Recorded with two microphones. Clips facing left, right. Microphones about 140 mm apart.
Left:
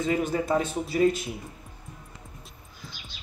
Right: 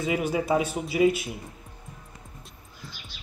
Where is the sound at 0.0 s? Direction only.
10° right (ahead or behind).